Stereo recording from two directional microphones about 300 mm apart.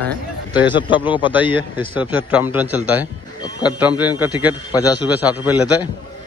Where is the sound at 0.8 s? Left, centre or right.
Centre.